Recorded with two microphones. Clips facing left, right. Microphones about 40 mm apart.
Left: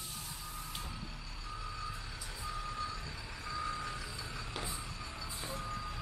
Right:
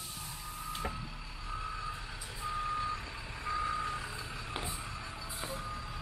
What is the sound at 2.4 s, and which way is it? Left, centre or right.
Reversing beeps, right.